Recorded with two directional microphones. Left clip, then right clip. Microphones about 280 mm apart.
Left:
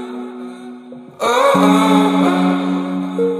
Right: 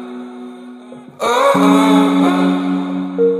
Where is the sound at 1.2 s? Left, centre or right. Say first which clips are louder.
Even; centre.